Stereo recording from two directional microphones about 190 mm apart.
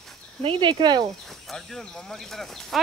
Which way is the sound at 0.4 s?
25° right (ahead or behind).